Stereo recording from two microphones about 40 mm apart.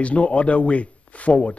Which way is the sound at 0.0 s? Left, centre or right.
Left.